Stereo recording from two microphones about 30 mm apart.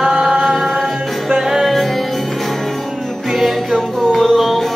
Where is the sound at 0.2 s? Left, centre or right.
Centre.